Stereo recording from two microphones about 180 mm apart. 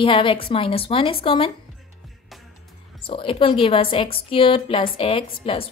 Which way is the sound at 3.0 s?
30° left (ahead or behind).